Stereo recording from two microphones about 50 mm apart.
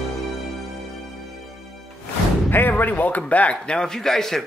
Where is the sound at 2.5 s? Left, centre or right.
Left.